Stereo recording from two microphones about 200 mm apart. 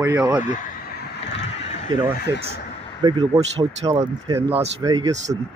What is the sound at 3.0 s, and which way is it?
Speech, 20° right (ahead or behind).